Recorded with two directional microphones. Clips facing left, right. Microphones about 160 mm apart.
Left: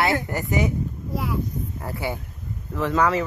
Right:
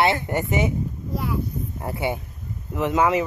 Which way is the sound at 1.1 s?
Centre (ahead or behind).